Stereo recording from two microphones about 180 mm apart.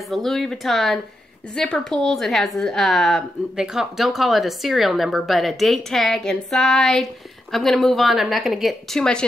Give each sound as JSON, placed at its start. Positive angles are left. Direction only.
{"t": 0.1, "sound": "a woman's voice", "side_deg": 0}